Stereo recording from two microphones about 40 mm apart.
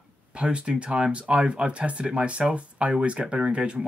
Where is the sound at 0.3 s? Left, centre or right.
Right.